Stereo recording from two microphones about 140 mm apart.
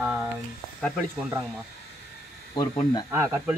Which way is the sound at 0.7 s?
5° left (ahead or behind).